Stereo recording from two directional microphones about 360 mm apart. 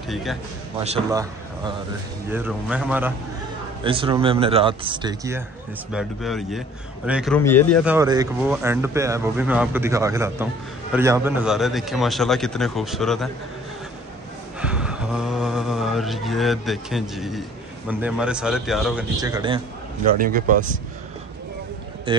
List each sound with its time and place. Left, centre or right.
0.1 s speech: centre
0.8 s speech: centre
3.8 s speech: centre
14.6 s a sound: centre
20.1 s speech: right